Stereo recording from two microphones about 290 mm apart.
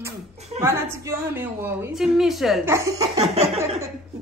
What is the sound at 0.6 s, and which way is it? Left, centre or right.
A woman's voice, centre.